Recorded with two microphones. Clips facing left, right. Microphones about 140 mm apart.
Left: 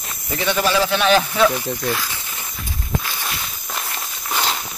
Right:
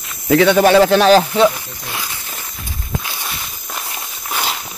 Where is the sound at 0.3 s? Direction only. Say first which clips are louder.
Right 10 dB; 75° right (ahead or behind); by 0.9 s 60° right (ahead or behind).